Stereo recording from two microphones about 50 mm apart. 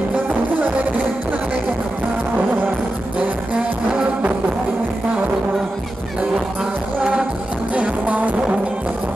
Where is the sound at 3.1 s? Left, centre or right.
Right.